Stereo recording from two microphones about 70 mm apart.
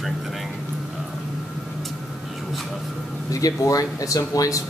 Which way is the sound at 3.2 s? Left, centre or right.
Left.